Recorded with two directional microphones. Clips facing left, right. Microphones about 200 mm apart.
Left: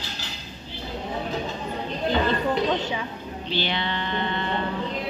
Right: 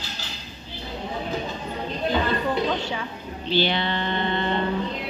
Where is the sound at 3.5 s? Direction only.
35° right (ahead or behind).